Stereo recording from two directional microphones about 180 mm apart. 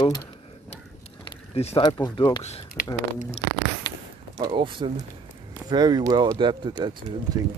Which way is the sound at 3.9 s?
25° left (ahead or behind).